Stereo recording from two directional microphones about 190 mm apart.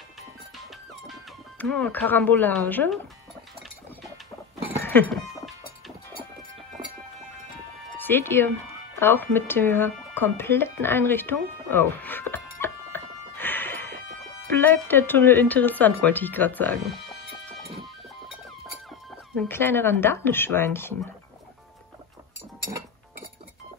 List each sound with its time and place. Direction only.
1.6 s speech: 10° left (ahead or behind)
4.8 s music: 10° left (ahead or behind)
8.0 s speech: 10° left (ahead or behind)
9.0 s a sound: 10° left (ahead or behind)
14.5 s speech: 10° left (ahead or behind)
16.8 s music: centre (ahead or behind)
19.3 s speech: 10° left (ahead or behind)